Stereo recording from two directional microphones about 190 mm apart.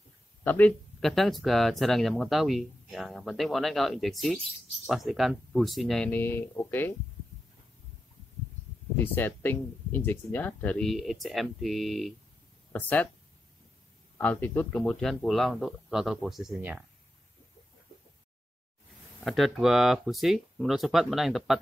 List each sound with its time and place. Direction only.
0.4 s speech: 10° left (ahead or behind)
8.9 s speech: 10° left (ahead or behind)
14.1 s speech: 10° left (ahead or behind)
19.2 s speech: centre (ahead or behind)